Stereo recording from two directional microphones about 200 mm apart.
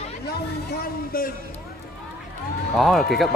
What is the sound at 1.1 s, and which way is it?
Speech, 45° left (ahead or behind).